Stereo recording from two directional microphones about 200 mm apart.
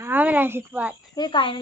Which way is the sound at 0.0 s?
10° right (ahead or behind).